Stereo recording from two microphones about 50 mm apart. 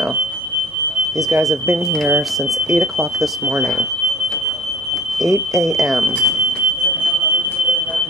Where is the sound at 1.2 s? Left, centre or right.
Centre.